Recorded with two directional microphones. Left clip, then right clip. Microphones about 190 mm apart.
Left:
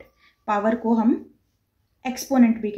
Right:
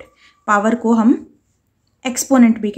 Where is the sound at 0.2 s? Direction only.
40° right (ahead or behind).